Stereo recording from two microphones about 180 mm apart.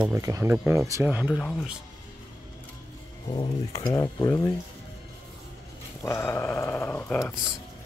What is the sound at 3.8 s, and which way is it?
Dog, 20° left (ahead or behind).